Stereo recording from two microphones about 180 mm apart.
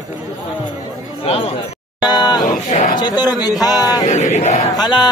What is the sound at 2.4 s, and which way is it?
Speech, 45° left (ahead or behind).